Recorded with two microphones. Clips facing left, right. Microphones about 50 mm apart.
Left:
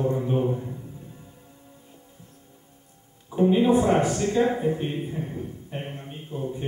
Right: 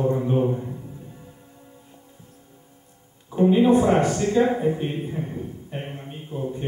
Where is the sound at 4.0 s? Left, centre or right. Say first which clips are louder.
Right 2 dB; centre.